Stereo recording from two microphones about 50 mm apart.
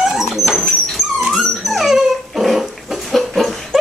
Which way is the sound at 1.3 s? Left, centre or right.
Centre.